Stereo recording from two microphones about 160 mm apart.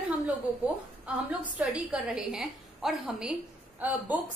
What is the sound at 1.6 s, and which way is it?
A woman's voice, 5° right (ahead or behind).